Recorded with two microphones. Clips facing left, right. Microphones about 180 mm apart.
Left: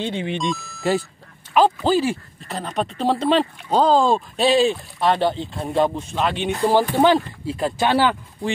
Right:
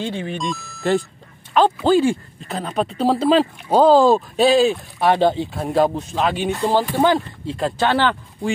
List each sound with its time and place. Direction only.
0.4 s speech: centre (ahead or behind)
5.0 s speech: 15° right (ahead or behind)
5.5 s speech: 5° right (ahead or behind)
6.7 s speech: 15° left (ahead or behind)